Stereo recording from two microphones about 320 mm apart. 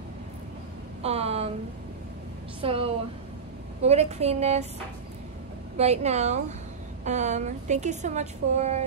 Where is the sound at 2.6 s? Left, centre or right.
Centre.